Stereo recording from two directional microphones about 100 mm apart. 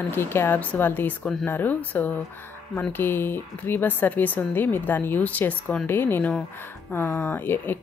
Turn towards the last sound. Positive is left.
turn(degrees=20)  # may be behind; listen again after turning